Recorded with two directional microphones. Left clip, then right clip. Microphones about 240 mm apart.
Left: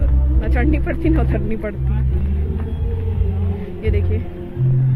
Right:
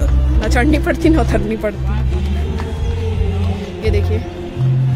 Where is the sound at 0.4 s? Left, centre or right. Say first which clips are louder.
Right 7 dB; centre.